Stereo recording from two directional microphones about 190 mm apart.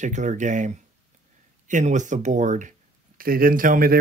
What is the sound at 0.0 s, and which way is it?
Speech, 40° right (ahead or behind).